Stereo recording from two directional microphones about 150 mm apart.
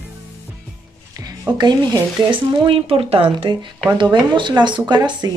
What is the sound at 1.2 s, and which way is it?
Music, 25° right (ahead or behind).